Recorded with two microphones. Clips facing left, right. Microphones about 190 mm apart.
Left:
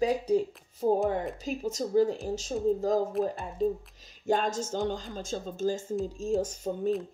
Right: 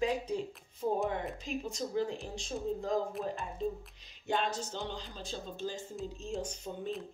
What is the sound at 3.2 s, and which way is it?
Speech, 40° left (ahead or behind).